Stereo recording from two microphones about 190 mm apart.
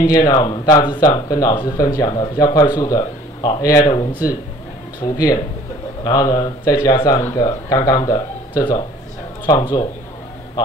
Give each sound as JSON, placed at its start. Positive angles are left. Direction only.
{"t": 0.0, "sound": "speech", "side_deg": 20}